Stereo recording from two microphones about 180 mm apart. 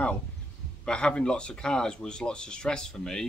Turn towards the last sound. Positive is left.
turn(degrees=5)  # may be behind; listen again after turning